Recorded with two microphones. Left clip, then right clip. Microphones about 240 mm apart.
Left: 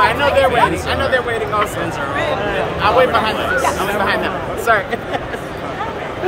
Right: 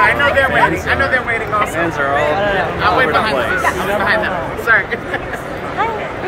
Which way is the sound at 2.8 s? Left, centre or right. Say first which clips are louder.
Left 1 dB; left.